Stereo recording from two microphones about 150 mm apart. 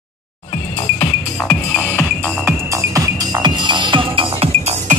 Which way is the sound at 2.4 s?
20° right (ahead or behind).